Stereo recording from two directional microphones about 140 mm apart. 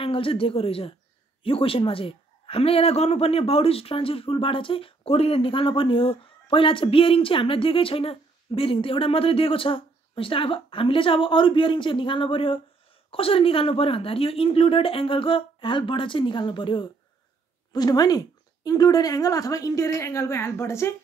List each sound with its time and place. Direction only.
0.0 s a man's voice: 40° left (ahead or behind); by 20.9 s 20° left (ahead or behind)